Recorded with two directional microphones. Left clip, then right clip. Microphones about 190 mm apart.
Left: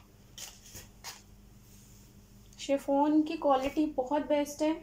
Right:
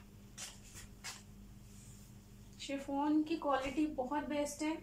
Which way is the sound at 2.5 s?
35° left (ahead or behind).